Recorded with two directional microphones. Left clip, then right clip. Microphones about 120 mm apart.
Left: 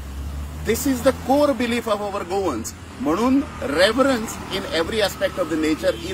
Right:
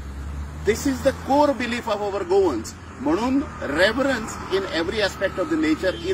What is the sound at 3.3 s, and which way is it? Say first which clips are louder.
Speech: left 3 dB; centre (ahead or behind).